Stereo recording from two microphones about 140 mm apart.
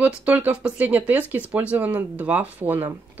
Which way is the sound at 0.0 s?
10° right (ahead or behind).